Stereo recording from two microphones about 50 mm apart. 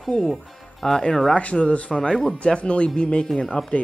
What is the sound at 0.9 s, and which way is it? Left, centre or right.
Speech, centre.